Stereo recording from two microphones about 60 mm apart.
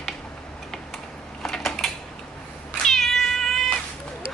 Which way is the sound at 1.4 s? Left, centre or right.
Centre.